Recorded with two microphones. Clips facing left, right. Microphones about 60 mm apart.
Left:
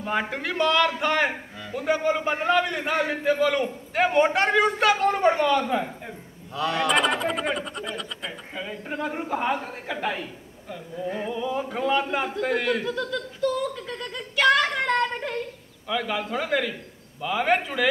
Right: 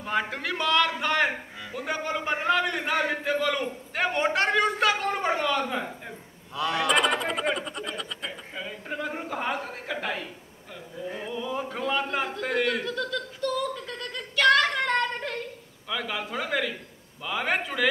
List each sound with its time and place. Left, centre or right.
0.0 s a man's voice: centre